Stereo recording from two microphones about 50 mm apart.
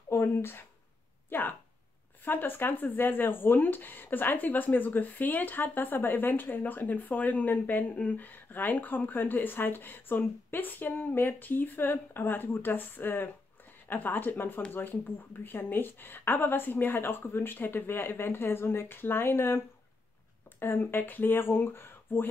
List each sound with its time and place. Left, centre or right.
0.1 s a woman's voice: left